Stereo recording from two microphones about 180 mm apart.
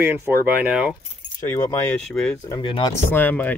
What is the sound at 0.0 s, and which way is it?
Speech, 10° right (ahead or behind).